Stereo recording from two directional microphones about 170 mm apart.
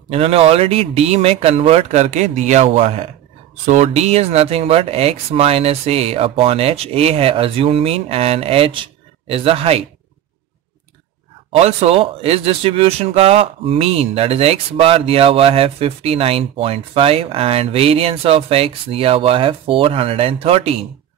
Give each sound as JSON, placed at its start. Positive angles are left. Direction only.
{"t": 0.1, "sound": "speech", "side_deg": -35}
{"t": 11.5, "sound": "speech", "side_deg": -35}